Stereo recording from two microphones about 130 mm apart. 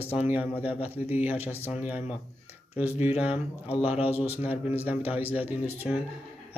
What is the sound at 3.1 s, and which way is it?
Speech, 10° right (ahead or behind).